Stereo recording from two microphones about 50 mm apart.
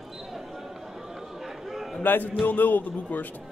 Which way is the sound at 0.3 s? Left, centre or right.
Centre.